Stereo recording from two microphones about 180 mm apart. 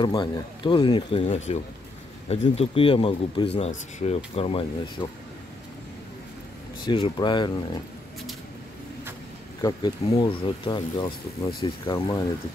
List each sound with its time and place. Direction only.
0.0 s speech: 25° left (ahead or behind)
6.9 s speech: 25° left (ahead or behind)
9.6 s speech: 20° left (ahead or behind)